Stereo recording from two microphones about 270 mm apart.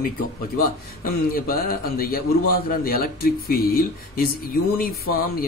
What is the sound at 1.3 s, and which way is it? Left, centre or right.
Speech, left.